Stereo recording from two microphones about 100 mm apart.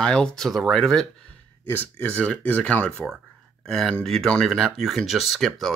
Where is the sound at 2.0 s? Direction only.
15° left (ahead or behind).